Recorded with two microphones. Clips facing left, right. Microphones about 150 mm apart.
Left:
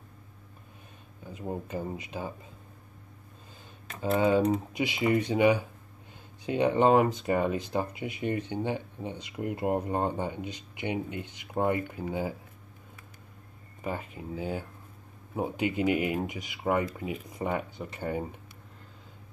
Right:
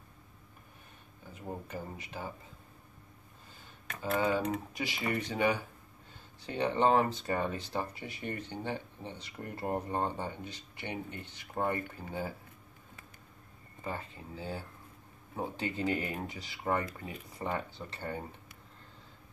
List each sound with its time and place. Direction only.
1.2 s speech: 20° left (ahead or behind)
4.2 s speech: 20° left (ahead or behind)
13.8 s speech: 15° left (ahead or behind)